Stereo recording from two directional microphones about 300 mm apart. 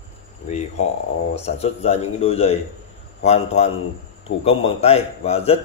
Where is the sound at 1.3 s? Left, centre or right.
Left.